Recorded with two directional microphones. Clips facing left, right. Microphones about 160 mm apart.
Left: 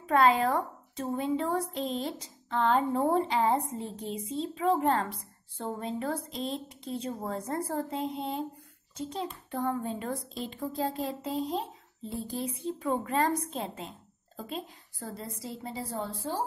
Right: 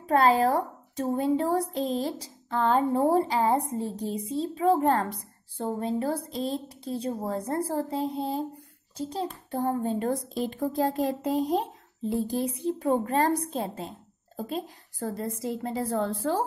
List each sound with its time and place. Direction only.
0.0 s a woman's voice: 35° right (ahead or behind); by 16.2 s 55° right (ahead or behind)